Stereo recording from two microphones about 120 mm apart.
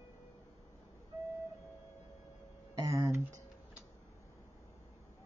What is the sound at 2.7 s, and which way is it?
Speech, 25° right (ahead or behind).